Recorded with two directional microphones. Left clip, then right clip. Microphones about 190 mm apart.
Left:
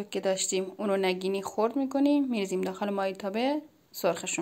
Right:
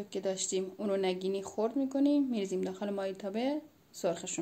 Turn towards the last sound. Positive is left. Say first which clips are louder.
# left 5 dB
turn(degrees=10)  # may be behind; listen again after turning